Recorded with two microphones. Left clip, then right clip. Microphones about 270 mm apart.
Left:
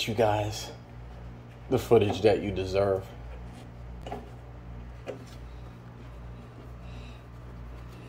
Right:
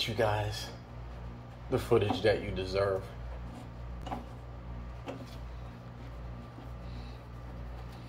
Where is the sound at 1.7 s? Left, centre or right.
Left.